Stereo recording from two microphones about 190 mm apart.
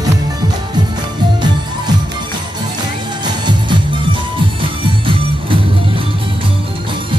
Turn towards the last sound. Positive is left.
turn(degrees=-25)  # may be behind; listen again after turning